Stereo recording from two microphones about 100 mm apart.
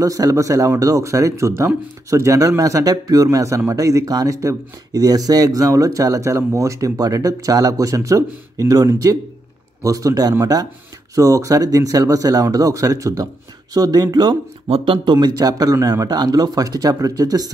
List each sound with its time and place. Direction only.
0.0 s speech: 35° right (ahead or behind)
14.7 s speech: 55° right (ahead or behind); by 17.5 s 40° right (ahead or behind)